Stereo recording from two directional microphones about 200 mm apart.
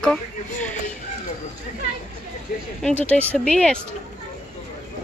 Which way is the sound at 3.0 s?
5° left (ahead or behind).